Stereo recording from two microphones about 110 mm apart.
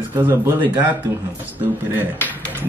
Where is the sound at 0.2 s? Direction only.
25° right (ahead or behind).